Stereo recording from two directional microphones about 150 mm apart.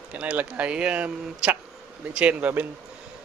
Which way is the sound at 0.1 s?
10° right (ahead or behind).